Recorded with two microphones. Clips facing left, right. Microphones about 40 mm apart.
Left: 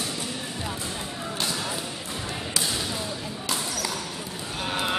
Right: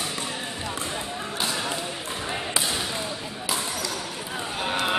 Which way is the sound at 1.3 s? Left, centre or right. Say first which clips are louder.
Right 2 dB; centre.